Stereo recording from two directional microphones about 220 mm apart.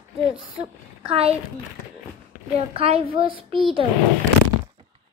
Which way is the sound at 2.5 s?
30° right (ahead or behind).